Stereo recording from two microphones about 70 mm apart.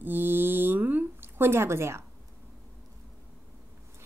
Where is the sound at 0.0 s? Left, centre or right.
Right.